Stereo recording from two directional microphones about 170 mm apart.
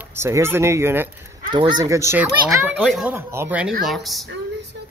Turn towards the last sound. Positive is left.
turn(degrees=0)  # may be behind; listen again after turning